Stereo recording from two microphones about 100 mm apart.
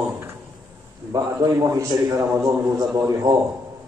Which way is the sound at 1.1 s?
35° right (ahead or behind).